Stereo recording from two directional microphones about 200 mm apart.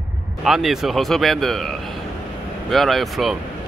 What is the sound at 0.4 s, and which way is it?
Speech, centre (ahead or behind).